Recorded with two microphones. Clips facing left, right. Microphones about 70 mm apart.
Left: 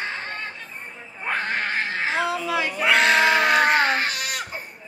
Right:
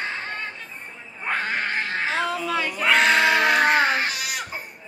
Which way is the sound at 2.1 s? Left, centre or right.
Centre.